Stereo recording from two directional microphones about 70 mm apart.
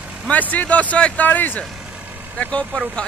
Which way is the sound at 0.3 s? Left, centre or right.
Left.